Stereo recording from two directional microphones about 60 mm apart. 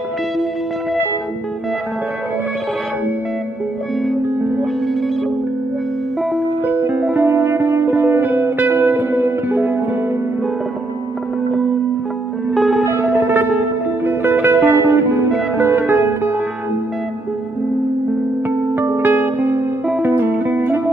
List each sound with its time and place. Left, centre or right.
4.2 s music: right
6.6 s music: right
12.8 s music: right
18.8 s music: right